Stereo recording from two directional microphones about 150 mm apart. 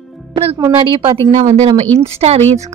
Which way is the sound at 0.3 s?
40° right (ahead or behind).